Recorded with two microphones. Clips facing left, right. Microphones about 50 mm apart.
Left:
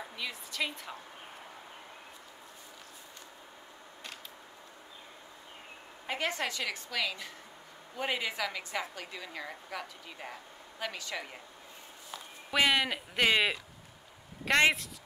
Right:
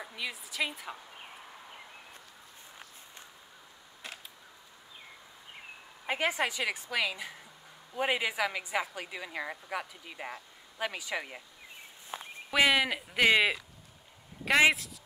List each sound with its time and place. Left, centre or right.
0.1 s a woman's voice: centre
6.0 s a woman's voice: centre
12.1 s speech: right
12.4 s speech: centre